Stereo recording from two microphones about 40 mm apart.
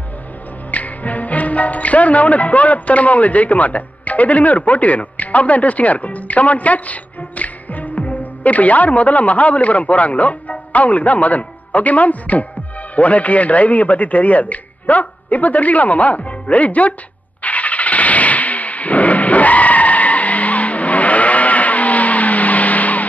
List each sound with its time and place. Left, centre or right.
0.7 s a man's voice: left
17.4 s vehicle: left